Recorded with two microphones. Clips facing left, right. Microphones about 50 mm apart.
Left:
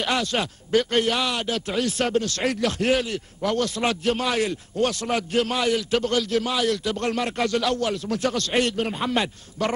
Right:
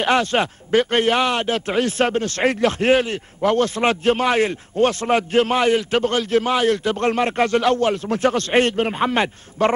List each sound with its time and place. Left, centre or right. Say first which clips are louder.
0.0 s speech: right 6 dB; right